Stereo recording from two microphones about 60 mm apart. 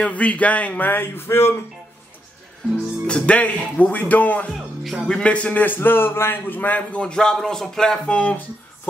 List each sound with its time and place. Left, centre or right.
0.0 s a man's voice: left
3.1 s a man's voice: centre
7.0 s speech: centre
8.1 s a man's voice: left